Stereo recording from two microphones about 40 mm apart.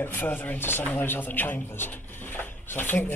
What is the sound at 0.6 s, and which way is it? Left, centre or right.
Speech, left.